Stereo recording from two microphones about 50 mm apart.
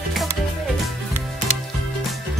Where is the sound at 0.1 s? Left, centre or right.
Centre.